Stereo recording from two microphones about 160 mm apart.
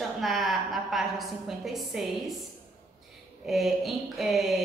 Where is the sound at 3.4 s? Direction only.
Centre (ahead or behind).